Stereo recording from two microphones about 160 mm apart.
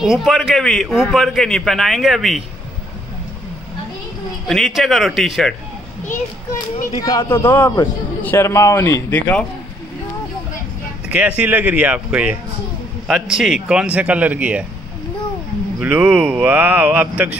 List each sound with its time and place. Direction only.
0.0 s a man's voice: centre (ahead or behind)
4.5 s a man's voice: centre (ahead or behind)
7.0 s a man's voice: 20° left (ahead or behind)
11.1 s speech: 10° right (ahead or behind)
15.8 s speech: 10° right (ahead or behind)